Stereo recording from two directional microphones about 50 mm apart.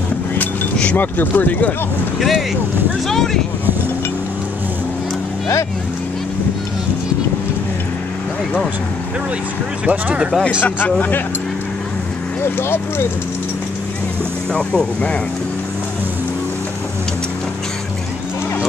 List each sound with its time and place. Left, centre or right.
0.9 s speech: left
3.1 s speech: centre
9.8 s speech: right
10.6 s speech: left
12.5 s speech: left
14.5 s speech: centre